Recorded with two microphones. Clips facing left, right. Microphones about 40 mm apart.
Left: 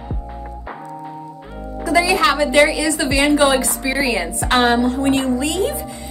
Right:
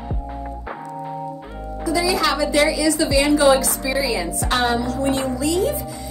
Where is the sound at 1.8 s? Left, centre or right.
Left.